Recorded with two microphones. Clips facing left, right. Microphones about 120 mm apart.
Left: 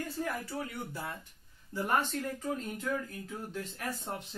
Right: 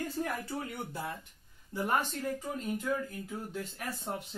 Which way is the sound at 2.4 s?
10° right (ahead or behind).